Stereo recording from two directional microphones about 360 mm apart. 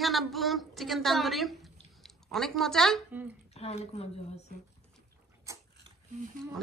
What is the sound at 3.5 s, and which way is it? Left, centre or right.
Speech, centre.